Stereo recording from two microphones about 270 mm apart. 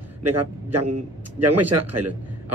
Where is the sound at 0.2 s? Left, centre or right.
Right.